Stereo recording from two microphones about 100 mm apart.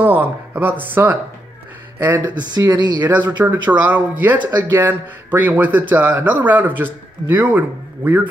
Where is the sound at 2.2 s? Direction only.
45° right (ahead or behind).